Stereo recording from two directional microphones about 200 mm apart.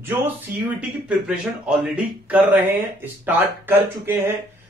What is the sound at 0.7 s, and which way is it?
A man's voice, 5° right (ahead or behind).